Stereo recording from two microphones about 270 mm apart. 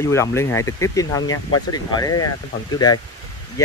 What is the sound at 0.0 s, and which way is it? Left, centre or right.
Speech, centre.